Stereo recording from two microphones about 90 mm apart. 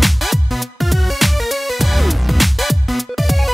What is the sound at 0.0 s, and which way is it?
Music, centre (ahead or behind).